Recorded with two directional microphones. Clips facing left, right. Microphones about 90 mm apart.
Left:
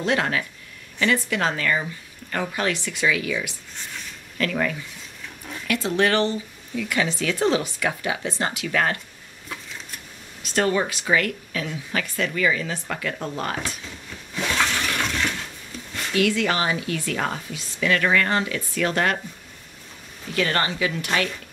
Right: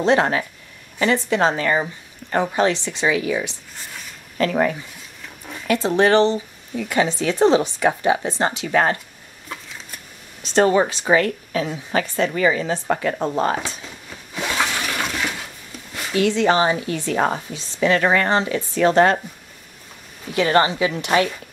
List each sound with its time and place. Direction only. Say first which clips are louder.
0.0 s speech: right 6 dB; 30° right (ahead or behind)
9.5 s a sound: right 2 dB; centre (ahead or behind)
10.4 s speech: right 6 dB; 30° right (ahead or behind)
14.3 s toilet flush: right 1 dB; 10° right (ahead or behind)
16.1 s speech: right 4 dB; 25° right (ahead or behind)
20.3 s speech: right 6 dB; 20° right (ahead or behind)